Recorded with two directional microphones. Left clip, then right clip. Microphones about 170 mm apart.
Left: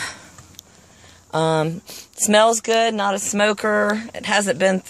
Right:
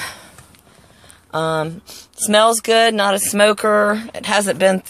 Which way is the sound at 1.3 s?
30° left (ahead or behind).